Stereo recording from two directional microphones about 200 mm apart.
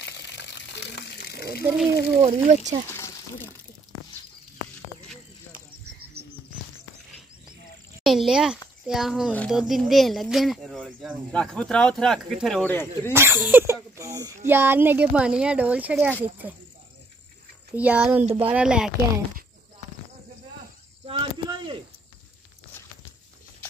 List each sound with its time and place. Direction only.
0.0 s water: 60° left (ahead or behind)
2.2 s speech: 35° right (ahead or behind)
2.9 s a sound: 10° left (ahead or behind)
8.0 s a child's voice: centre (ahead or behind)
13.1 s speech: 10° right (ahead or behind)
17.7 s speech: 5° right (ahead or behind)
18.2 s speech: 25° right (ahead or behind)
18.5 s speech: 5° right (ahead or behind)
21.1 s a sound: 25° right (ahead or behind)